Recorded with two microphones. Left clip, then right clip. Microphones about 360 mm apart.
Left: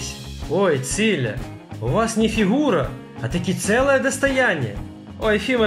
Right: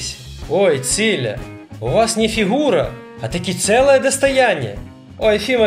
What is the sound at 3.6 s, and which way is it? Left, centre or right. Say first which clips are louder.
Speech: right 6 dB; right.